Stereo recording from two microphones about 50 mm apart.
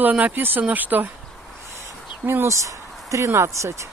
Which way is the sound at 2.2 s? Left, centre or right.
Right.